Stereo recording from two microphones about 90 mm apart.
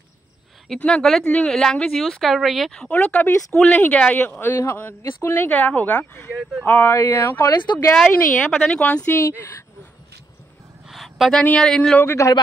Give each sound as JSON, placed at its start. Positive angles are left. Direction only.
{"t": 0.7, "sound": "a woman's voice", "side_deg": 10}
{"t": 2.9, "sound": "a woman's voice", "side_deg": 15}
{"t": 7.4, "sound": "speech", "side_deg": 55}
{"t": 8.1, "sound": "a woman's voice", "side_deg": 15}
{"t": 10.9, "sound": "a sound", "side_deg": 0}
{"t": 11.5, "sound": "a woman's voice", "side_deg": 5}
{"t": 12.0, "sound": "a woman's voice", "side_deg": 25}